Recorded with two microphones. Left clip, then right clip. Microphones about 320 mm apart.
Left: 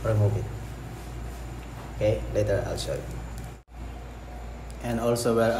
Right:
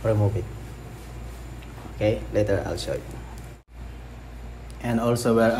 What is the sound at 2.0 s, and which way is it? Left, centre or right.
Speech, right.